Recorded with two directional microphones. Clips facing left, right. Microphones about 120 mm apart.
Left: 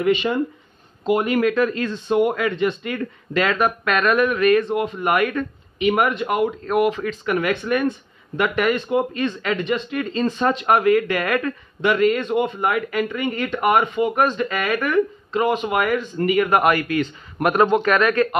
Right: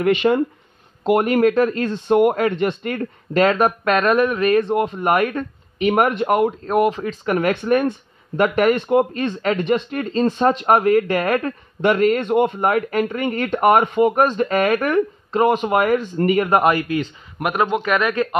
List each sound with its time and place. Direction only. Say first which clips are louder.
0.0 s speech: right 3 dB; 55° right (ahead or behind); by 8.7 s 40° right (ahead or behind)
8.7 s speech: right 4 dB; 55° right (ahead or behind); by 17.1 s 25° right (ahead or behind)
17.4 s speech: left 3 dB; 10° right (ahead or behind)